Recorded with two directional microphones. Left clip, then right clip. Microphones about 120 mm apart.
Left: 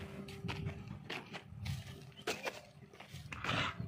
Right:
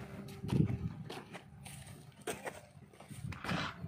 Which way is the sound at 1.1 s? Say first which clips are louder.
Left 4 dB; 90° right.